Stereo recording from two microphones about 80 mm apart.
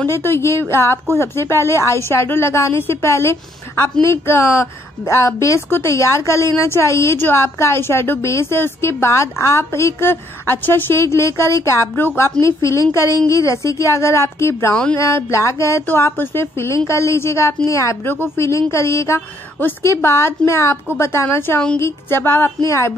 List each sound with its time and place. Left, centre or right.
0.0 s a woman's voice: left
15.9 s a woman's voice: left